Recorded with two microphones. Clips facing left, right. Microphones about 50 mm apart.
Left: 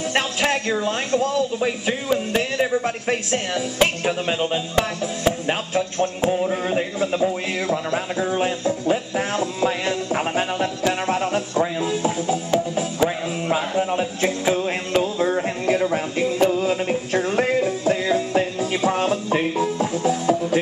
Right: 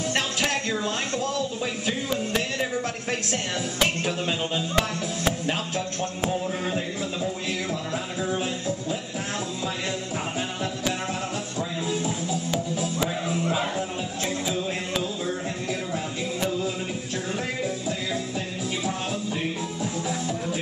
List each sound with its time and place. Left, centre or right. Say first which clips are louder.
0.1 s a sound: left 6 dB; left
0.8 s speech: left 6 dB; left
6.7 s music: left 7 dB; left